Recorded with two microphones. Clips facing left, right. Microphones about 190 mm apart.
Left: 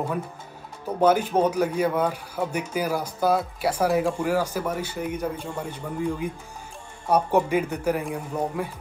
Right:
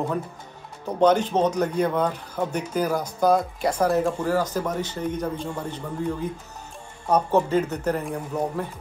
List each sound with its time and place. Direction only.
0.8 s speech: 10° left (ahead or behind)